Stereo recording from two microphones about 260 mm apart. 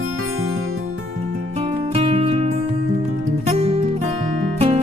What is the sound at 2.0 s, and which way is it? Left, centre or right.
Music, right.